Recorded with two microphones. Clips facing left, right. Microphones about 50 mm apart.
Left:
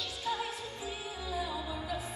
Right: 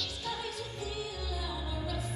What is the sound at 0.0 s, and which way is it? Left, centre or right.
Music, centre.